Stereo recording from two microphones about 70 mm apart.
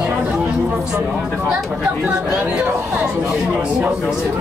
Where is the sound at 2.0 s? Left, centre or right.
Centre.